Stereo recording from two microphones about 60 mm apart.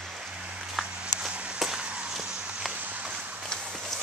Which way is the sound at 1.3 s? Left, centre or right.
Right.